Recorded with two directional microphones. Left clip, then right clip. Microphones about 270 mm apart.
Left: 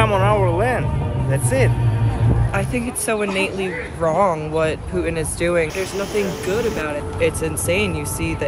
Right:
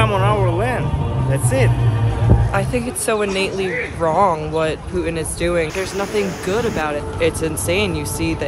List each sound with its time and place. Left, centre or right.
0.0 s music: centre
1.3 s speech: centre
6.5 s speech: centre